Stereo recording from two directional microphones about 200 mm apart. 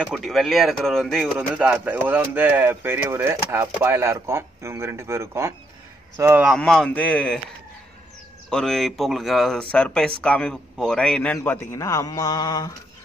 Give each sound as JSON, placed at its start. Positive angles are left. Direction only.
{"t": 0.0, "sound": "speech", "side_deg": 0}
{"t": 8.5, "sound": "a man's voice", "side_deg": 0}